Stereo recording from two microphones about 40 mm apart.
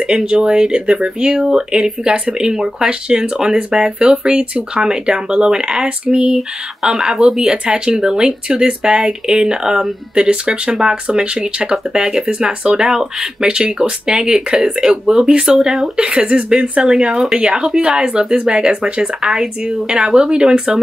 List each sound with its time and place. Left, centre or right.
0.0 s speech: centre
6.9 s speech: centre
16.1 s speech: right
16.8 s speech: centre